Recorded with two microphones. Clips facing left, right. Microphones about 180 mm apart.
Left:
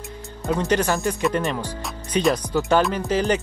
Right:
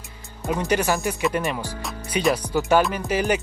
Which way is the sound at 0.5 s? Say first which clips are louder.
Left 1 dB; 10° right (ahead or behind).